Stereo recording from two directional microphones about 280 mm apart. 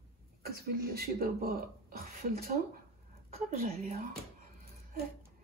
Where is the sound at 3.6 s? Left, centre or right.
Right.